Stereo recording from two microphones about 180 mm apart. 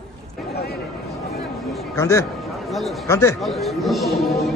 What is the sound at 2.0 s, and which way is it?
Speech, 15° left (ahead or behind).